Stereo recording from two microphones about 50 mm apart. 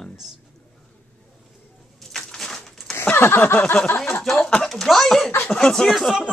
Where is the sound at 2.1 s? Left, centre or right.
Centre.